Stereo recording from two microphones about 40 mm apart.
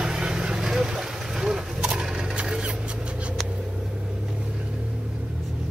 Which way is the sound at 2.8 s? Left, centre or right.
Right.